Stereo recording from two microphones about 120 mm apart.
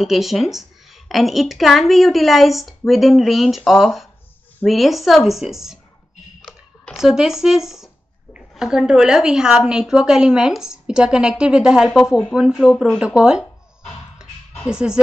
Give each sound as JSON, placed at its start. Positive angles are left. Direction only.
{"t": 0.0, "sound": "speech", "side_deg": 0}
{"t": 6.9, "sound": "speech", "side_deg": -5}
{"t": 14.7, "sound": "speech", "side_deg": -5}